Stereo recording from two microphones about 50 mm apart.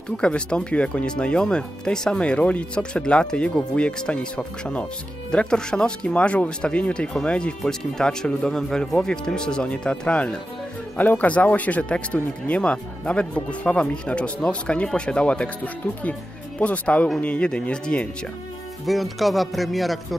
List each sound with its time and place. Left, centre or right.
0.2 s speech: centre
18.9 s speech: centre